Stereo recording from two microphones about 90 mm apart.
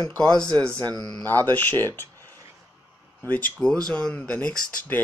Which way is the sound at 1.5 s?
20° left (ahead or behind).